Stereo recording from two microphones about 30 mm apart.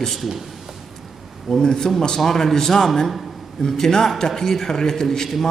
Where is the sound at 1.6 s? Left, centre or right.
Centre.